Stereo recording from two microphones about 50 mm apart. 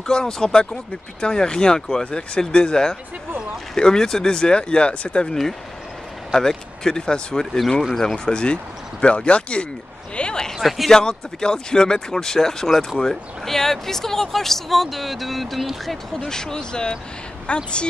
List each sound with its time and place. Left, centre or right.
0.0 s speech: centre
6.3 s speech: centre
8.3 s speech: centre
10.1 s a sound: centre
10.9 s speech: centre
16.3 s speech: centre